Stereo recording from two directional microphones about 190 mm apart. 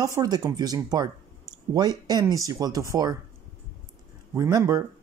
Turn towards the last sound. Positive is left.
turn(degrees=-20)  # may be behind; listen again after turning